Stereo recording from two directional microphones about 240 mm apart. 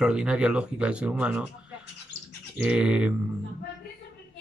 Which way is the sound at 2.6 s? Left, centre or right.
Centre.